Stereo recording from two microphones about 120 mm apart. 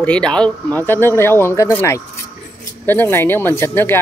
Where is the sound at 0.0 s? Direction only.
10° left (ahead or behind).